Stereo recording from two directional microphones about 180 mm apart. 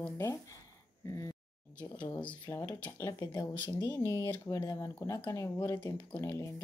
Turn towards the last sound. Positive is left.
turn(degrees=15)  # may be behind; listen again after turning